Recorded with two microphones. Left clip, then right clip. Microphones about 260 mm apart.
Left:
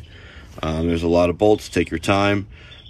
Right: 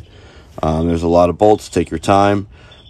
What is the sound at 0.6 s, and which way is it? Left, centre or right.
Speech, centre.